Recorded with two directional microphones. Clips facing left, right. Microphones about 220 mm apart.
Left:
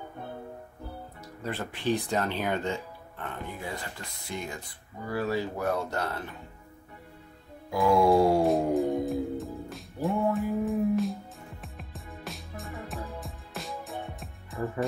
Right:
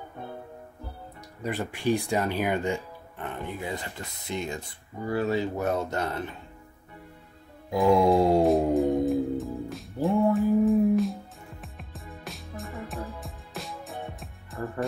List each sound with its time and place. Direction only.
1.4 s speech: 15° right (ahead or behind)
7.7 s speech: 20° right (ahead or behind)
8.5 s music: centre (ahead or behind)